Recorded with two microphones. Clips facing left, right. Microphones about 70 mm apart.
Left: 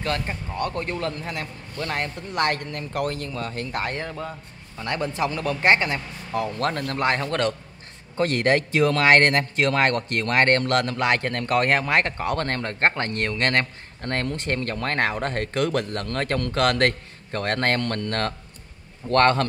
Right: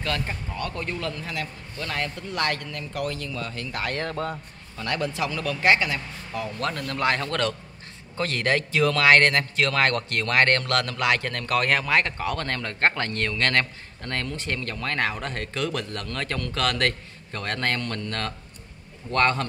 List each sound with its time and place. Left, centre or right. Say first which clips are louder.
0.0 s a man's voice: left 2 dB; left
4.1 s a man's voice: right 3 dB; centre
4.7 s a man's voice: left 1 dB; left
19.0 s a man's voice: left 4 dB; left